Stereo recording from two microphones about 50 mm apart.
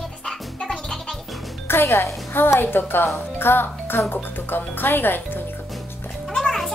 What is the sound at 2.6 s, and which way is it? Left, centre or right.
A woman's voice, left.